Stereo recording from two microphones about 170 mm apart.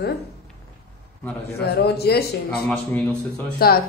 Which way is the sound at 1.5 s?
70° left (ahead or behind).